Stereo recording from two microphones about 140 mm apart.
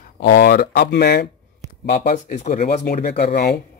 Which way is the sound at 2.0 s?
55° left (ahead or behind).